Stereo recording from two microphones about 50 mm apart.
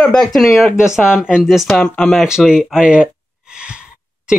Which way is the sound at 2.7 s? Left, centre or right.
Centre.